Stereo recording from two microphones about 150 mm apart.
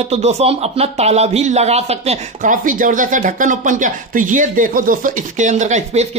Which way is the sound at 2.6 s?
65° right (ahead or behind).